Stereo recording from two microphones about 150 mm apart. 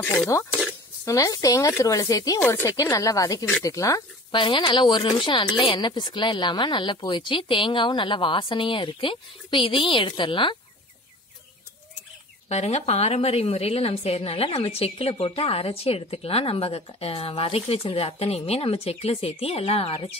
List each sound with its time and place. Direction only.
0.5 s a sound: 10° right (ahead or behind)
1.0 s speech: 20° left (ahead or behind)
4.3 s a woman's voice: 35° left (ahead or behind)
12.4 s a woman's voice: 45° left (ahead or behind)